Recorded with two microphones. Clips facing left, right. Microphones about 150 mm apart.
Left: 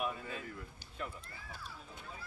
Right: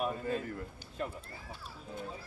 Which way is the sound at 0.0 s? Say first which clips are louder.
Right 6 dB; 40° right (ahead or behind).